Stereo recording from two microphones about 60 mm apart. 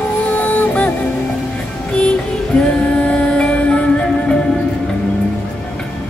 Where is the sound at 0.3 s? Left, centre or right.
Left.